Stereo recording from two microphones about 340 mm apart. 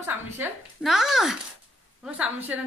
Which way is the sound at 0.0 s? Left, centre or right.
Centre.